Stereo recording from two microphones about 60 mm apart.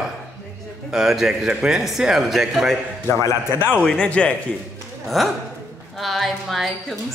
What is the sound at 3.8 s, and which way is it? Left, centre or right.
Speech, centre.